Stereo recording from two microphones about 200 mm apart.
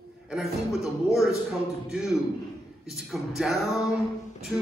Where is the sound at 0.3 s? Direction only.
Centre (ahead or behind).